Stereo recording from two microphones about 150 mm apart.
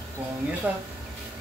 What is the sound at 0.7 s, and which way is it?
Speech, 10° right (ahead or behind).